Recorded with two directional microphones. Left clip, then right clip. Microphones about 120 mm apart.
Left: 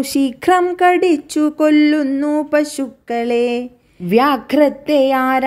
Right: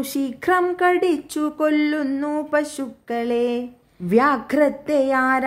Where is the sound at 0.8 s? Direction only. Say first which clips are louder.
Left 6 dB; 25° left (ahead or behind).